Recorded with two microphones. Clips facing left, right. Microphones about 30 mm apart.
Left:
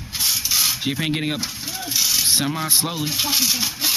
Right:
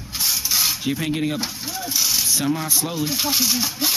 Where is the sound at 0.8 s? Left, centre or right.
Left.